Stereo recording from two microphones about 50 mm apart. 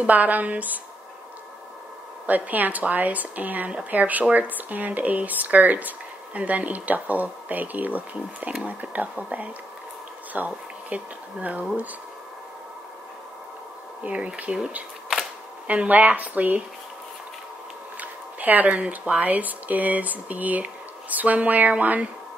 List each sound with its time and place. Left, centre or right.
0.0 s speech: right
2.2 s speech: right
14.0 s speech: right
17.9 s speech: right